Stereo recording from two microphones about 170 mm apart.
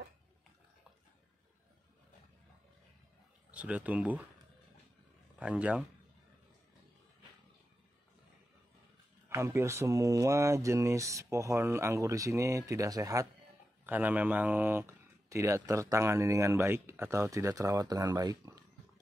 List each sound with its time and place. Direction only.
3.5 s speech: 10° right (ahead or behind)
5.4 s speech: 5° right (ahead or behind)
9.3 s speech: 15° right (ahead or behind)
13.8 s speech: 10° right (ahead or behind)